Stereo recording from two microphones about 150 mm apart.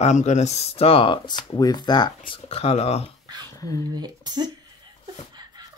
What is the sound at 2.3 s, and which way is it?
Speech, 45° left (ahead or behind).